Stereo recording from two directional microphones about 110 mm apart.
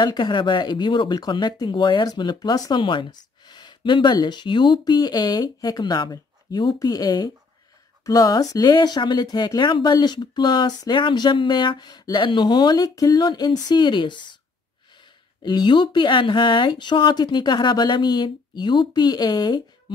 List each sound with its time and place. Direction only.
0.0 s speech: 45° left (ahead or behind)
15.4 s speech: 40° left (ahead or behind)